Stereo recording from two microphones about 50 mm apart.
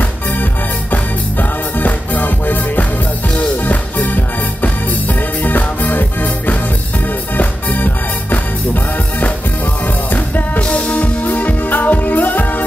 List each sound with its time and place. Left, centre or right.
1.8 s music: left
10.1 s music: left
10.7 s music: left
11.2 s music: left